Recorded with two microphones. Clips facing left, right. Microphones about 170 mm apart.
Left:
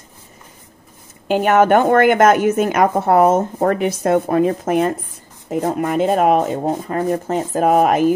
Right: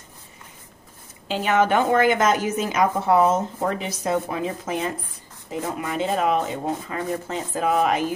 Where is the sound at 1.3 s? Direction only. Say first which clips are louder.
Left 7 dB; 55° left (ahead or behind).